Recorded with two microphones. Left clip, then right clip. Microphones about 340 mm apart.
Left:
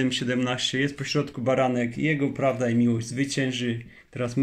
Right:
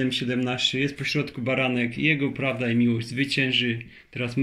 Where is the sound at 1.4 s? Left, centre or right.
Left.